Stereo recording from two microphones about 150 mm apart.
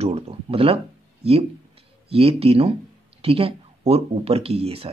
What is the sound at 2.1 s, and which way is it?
Speech, 40° right (ahead or behind).